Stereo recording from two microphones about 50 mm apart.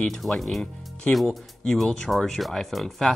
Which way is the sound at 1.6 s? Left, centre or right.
Centre.